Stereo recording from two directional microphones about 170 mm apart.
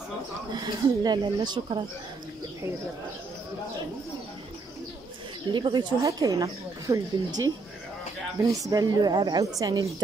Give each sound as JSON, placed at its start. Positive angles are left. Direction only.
{"t": 0.5, "sound": "speech", "side_deg": -25}
{"t": 5.5, "sound": "speech", "side_deg": -25}
{"t": 8.6, "sound": "speech", "side_deg": -20}